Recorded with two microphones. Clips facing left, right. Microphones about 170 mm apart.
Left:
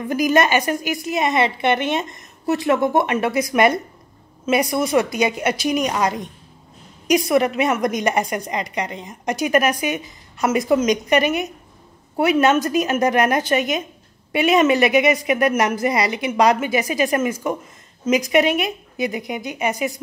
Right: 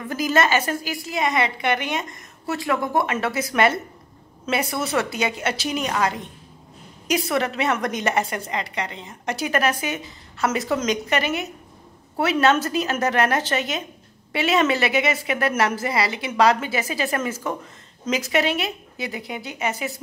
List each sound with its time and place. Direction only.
0.1 s a woman's voice: 15° left (ahead or behind)